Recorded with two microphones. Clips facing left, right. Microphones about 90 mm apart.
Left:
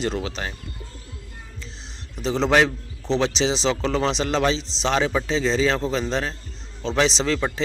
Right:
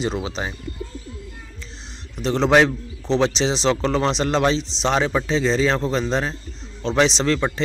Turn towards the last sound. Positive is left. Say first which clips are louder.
# right 2 dB
turn(degrees=0)  # may be behind; listen again after turning